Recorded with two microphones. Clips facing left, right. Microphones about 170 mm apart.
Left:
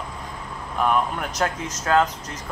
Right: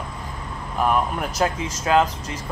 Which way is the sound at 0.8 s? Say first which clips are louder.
Right 1 dB; 5° right (ahead or behind).